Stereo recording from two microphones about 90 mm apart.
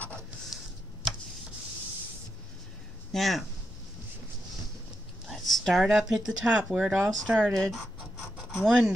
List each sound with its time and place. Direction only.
3.1 s speech: centre (ahead or behind)
5.3 s speech: centre (ahead or behind)
7.5 s speech: 5° left (ahead or behind)
8.6 s speech: 10° right (ahead or behind)